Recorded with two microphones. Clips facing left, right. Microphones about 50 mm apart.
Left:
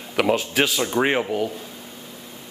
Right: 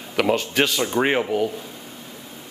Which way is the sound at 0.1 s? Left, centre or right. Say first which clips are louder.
Even; centre.